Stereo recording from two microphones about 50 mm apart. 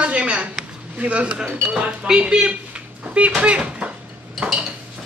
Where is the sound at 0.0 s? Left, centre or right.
Right.